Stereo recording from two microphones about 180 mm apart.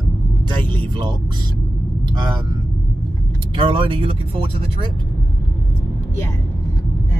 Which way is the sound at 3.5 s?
30° right (ahead or behind).